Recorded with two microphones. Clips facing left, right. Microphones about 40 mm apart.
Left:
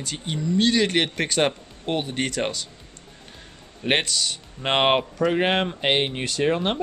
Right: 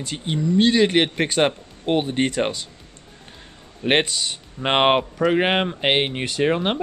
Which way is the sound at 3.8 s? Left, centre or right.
Centre.